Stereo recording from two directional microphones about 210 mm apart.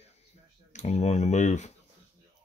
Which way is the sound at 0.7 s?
30° left (ahead or behind).